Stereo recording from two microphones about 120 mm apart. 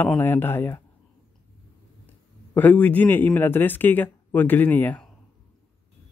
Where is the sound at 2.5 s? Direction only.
15° left (ahead or behind).